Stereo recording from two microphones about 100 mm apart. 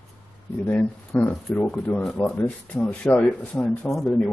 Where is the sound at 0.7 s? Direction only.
15° left (ahead or behind).